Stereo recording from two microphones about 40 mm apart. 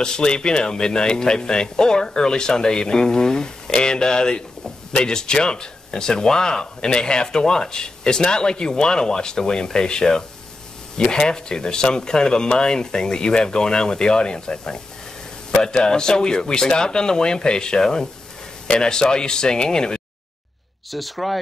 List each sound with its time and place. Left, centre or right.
0.0 s speech: centre
20.9 s speech: centre